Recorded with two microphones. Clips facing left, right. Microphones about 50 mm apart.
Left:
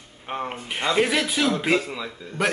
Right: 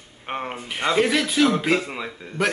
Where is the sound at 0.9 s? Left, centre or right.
Centre.